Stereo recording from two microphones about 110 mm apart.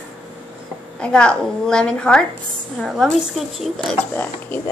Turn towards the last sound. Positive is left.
turn(degrees=15)  # may be behind; listen again after turning